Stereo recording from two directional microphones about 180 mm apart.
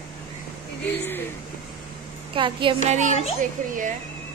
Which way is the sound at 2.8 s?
40° right (ahead or behind).